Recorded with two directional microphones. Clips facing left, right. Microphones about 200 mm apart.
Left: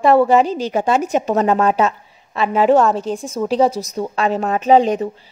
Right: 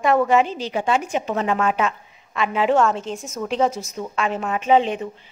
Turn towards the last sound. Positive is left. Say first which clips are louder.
# left 5 dB
turn(degrees=40)  # may be behind; listen again after turning